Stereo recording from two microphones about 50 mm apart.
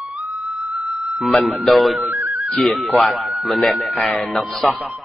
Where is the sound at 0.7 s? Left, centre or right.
Centre.